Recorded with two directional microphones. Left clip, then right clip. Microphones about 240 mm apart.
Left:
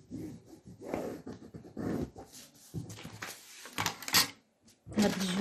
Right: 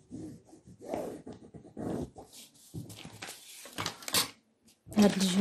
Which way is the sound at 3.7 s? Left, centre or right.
Centre.